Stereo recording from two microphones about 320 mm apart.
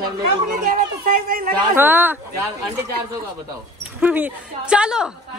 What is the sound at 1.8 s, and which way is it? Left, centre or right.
Speech, centre.